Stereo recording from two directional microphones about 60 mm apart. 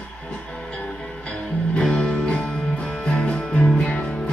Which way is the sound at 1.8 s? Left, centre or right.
Centre.